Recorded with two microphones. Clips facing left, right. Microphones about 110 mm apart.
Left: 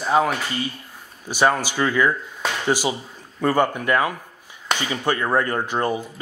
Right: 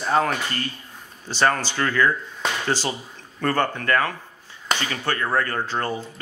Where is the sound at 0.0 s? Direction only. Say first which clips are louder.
Left 2 dB; 5° left (ahead or behind).